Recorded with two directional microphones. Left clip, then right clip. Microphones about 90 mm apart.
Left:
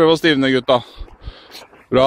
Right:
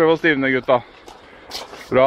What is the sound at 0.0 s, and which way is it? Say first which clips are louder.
Speech: left 2 dB; 50° left (ahead or behind).